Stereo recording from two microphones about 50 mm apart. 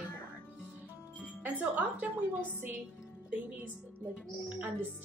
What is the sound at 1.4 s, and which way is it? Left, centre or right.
A woman's voice, right.